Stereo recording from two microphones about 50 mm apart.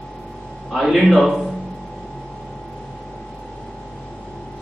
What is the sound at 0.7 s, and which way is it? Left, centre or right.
Speech, centre.